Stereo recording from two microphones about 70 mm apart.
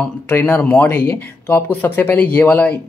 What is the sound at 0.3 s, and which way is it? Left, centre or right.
Speech, left.